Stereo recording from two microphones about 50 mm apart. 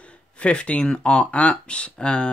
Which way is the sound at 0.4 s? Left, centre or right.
Left.